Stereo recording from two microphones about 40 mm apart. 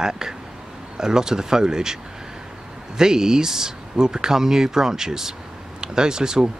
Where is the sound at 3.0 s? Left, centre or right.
Centre.